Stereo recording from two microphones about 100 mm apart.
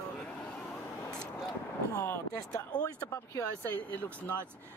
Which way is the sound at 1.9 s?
25° left (ahead or behind).